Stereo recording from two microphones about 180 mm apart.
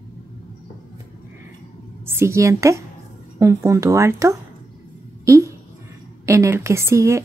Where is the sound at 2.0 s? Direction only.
15° right (ahead or behind).